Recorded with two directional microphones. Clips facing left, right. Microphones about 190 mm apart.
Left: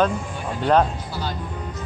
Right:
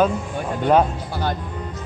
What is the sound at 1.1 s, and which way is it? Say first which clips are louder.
Music: right 5 dB; 55° right (ahead or behind).